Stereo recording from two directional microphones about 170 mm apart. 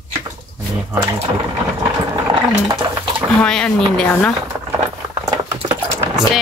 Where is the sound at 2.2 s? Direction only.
25° right (ahead or behind).